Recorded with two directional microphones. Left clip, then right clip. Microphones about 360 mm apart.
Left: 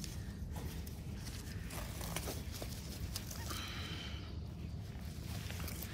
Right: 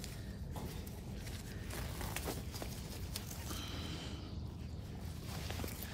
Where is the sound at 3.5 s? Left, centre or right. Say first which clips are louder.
Left 2 dB; centre.